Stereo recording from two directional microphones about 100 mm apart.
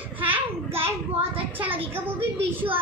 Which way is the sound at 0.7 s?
80° right.